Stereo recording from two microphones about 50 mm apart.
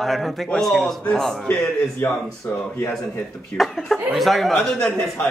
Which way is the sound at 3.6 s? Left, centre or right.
Centre.